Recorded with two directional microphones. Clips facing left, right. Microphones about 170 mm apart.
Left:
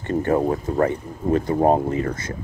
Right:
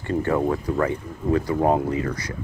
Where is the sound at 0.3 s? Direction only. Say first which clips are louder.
Left 2 dB; 40° left (ahead or behind).